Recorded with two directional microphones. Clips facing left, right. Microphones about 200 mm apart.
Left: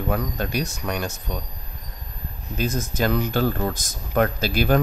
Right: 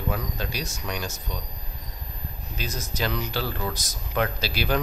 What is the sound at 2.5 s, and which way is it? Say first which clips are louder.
Speech: left 8 dB; 50° left (ahead or behind).